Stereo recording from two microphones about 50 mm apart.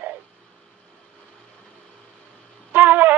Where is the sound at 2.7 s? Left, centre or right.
Right.